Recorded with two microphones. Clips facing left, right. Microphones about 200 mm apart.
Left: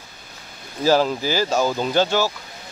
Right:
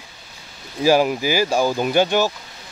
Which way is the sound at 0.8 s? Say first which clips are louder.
Right 2 dB; 15° right (ahead or behind).